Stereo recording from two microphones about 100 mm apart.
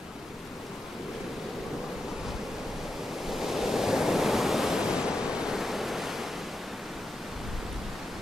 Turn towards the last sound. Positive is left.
turn(degrees=0)  # may be behind; listen again after turning